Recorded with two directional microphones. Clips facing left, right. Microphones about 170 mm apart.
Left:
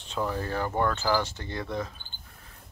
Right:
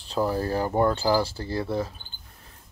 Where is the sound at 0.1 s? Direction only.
35° right (ahead or behind).